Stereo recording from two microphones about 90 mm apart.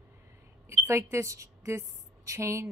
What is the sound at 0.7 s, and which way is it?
A woman's voice, 30° right (ahead or behind).